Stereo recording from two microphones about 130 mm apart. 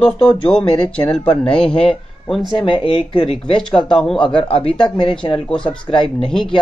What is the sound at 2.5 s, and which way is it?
Speech, 45° left (ahead or behind).